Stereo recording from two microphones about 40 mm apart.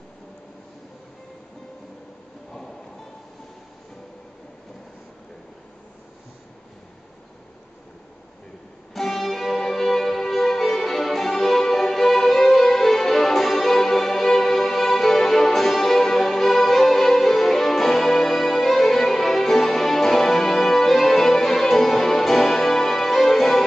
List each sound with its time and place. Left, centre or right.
8.9 s music: centre